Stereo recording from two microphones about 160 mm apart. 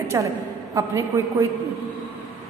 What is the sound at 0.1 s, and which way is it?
A woman's voice, 20° right (ahead or behind).